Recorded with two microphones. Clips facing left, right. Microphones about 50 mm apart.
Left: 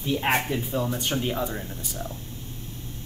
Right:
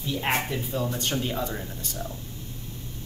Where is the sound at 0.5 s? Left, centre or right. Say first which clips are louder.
Left 2 dB; centre.